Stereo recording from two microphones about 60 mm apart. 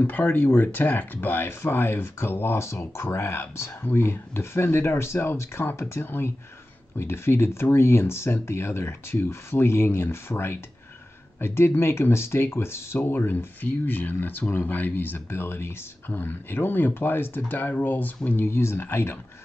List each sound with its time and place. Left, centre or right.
0.0 s speech: left